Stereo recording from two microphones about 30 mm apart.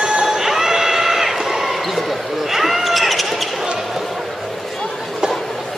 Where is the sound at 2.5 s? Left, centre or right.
Centre.